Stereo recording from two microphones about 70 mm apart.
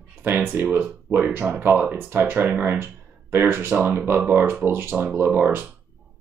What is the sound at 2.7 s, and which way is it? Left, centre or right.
Speech, right.